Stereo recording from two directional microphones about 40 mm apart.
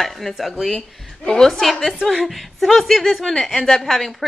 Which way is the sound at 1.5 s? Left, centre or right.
Centre.